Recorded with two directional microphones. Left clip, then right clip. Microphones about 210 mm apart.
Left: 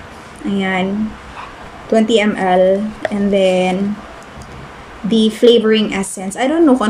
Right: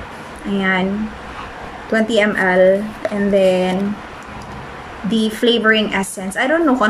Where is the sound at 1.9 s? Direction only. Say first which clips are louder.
Left 2 dB; 15° left (ahead or behind).